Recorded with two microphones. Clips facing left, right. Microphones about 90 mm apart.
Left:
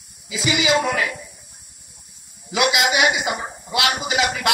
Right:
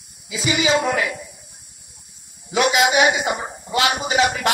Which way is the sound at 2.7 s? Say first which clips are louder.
Right 4 dB; 40° right (ahead or behind).